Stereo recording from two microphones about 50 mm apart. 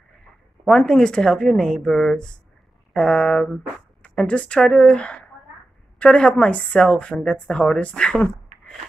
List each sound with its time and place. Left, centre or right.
0.7 s a woman's voice: centre